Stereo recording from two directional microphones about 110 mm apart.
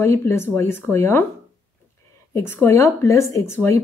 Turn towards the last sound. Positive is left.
turn(degrees=25)  # may be behind; listen again after turning